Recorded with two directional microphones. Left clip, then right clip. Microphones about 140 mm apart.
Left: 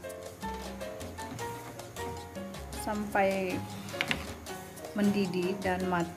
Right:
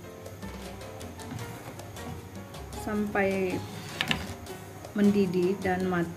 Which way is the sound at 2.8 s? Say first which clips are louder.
Even; 15° left (ahead or behind).